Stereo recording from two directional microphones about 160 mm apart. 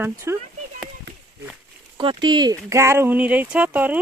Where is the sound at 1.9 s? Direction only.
30° right (ahead or behind).